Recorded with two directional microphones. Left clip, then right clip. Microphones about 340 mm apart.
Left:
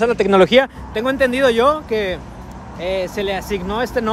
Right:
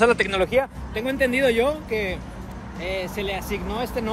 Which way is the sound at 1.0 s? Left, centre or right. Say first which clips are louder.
Left 5 dB; centre.